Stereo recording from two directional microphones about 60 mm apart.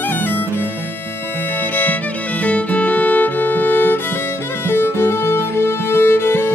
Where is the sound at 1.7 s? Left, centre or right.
Left.